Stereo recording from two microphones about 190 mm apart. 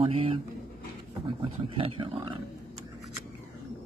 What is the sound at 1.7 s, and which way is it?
Speech, 30° right (ahead or behind).